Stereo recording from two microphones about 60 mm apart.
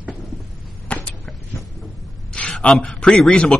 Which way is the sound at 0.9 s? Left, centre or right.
Left.